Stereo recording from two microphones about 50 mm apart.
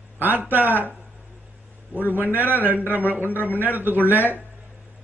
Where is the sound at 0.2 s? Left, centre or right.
Right.